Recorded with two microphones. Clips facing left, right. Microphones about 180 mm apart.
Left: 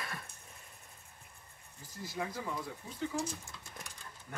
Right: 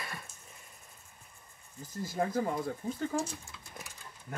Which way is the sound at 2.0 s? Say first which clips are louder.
Right 8 dB; 45° right (ahead or behind).